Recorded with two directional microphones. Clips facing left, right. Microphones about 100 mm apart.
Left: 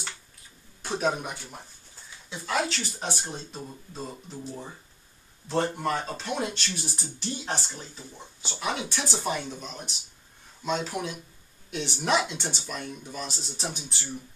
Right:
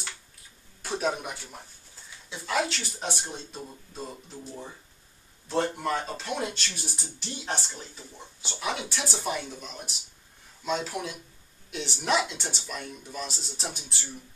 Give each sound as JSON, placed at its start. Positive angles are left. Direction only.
{"t": 0.8, "sound": "speech", "side_deg": 0}